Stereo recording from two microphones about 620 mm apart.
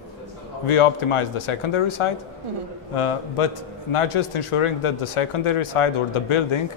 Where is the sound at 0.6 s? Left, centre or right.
Left.